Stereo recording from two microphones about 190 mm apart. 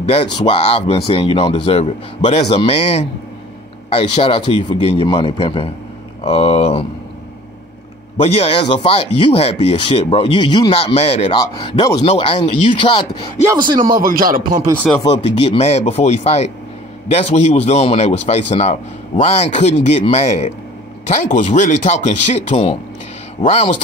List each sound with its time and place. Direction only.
0.1 s a man's voice: 30° left (ahead or behind)
8.2 s a man's voice: 35° left (ahead or behind)
13.5 s speech: 25° right (ahead or behind)
13.7 s speech: 50° right (ahead or behind)
15.0 s a man's voice: 30° left (ahead or behind)